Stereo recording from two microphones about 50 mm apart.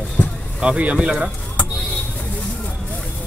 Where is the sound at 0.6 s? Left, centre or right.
Right.